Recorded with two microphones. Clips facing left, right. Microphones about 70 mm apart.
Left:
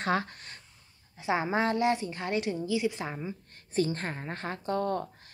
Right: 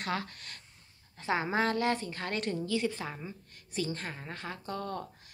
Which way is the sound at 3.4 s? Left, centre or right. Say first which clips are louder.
Left 6 dB; left.